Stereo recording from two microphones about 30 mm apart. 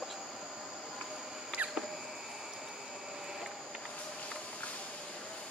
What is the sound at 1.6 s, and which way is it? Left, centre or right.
Rodents, right.